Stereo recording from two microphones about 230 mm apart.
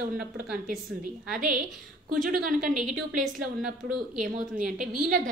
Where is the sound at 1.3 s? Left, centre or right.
Right.